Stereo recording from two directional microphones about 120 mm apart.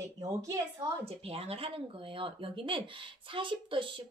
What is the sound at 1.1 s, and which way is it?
Speech, 55° right (ahead or behind).